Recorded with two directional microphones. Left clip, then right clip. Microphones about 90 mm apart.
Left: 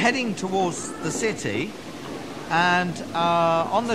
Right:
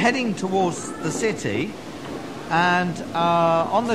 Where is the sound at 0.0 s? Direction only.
15° left (ahead or behind).